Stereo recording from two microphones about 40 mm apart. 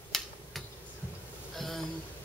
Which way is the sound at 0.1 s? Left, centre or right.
Centre.